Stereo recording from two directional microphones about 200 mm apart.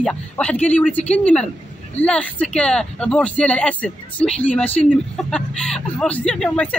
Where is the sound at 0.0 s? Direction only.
5° left (ahead or behind).